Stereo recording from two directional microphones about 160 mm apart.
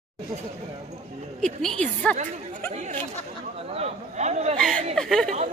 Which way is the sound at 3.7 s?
45° right (ahead or behind).